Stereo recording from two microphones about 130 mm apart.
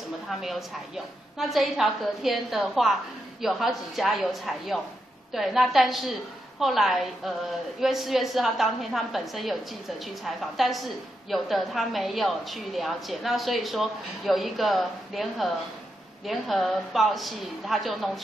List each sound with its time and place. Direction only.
0.4 s a woman's voice: centre (ahead or behind)